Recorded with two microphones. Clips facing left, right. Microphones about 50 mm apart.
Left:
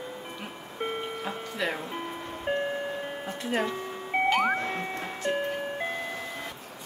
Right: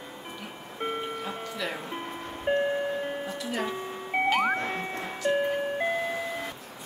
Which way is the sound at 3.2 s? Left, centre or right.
Left.